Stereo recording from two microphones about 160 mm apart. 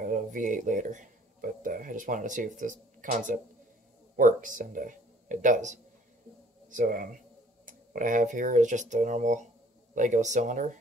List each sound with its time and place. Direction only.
0.0 s speech: 55° right (ahead or behind)